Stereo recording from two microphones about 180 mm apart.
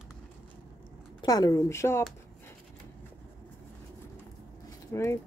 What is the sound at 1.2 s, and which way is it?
Speech, 20° left (ahead or behind).